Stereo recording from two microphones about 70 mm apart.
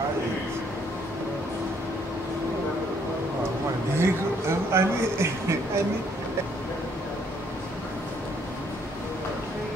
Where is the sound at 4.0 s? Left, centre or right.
Right.